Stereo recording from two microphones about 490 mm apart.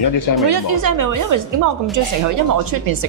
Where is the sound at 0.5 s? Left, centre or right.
Right.